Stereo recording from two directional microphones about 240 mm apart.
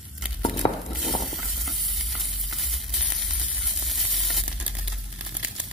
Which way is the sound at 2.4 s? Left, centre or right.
Centre.